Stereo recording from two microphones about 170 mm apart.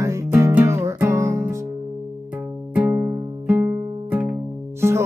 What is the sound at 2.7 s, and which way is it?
Music, 10° right (ahead or behind).